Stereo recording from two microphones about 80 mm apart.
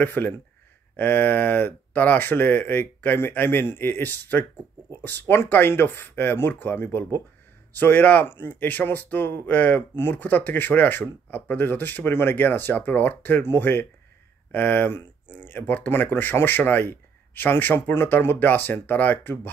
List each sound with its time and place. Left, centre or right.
0.0 s speech: left